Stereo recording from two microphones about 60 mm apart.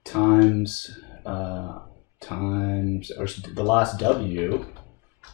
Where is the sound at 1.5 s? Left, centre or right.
Centre.